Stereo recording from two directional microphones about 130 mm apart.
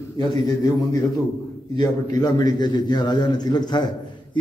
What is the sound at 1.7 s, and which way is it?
A man's voice, 30° left (ahead or behind).